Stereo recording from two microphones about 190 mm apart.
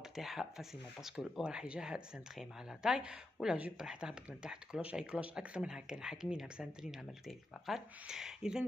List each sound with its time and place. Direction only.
0.1 s speech: centre (ahead or behind)